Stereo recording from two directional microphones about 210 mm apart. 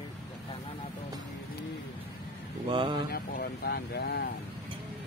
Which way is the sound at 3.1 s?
45° left (ahead or behind).